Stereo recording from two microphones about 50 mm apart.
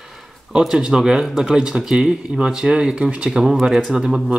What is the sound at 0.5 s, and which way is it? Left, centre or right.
Speech, centre.